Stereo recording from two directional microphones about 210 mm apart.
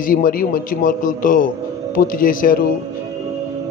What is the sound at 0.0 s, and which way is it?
A man's voice, 40° left (ahead or behind).